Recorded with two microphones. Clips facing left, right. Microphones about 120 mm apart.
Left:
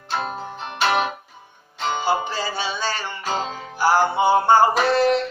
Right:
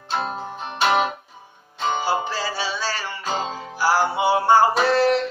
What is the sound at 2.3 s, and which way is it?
Music, 5° right (ahead or behind).